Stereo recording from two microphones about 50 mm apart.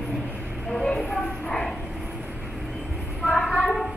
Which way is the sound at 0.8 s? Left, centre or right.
Centre.